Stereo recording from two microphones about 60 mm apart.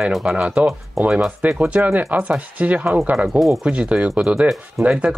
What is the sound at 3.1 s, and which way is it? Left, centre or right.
Speech, centre.